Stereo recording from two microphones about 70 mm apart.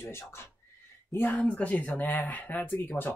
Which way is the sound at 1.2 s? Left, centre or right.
Left.